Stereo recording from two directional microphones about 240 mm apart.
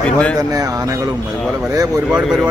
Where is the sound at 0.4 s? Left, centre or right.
Centre.